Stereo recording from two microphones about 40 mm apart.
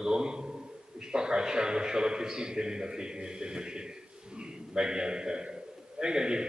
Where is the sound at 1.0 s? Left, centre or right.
Centre.